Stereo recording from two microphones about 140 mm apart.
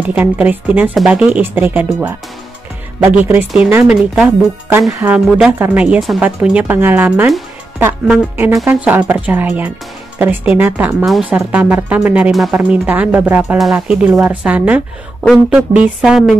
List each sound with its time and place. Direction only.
0.1 s speech: 10° right (ahead or behind)
4.6 s music: 20° right (ahead or behind)
5.1 s speech: 10° right (ahead or behind)
8.6 s speech: 15° right (ahead or behind)
11.1 s speech: centre (ahead or behind)
12.5 s speech: 15° right (ahead or behind)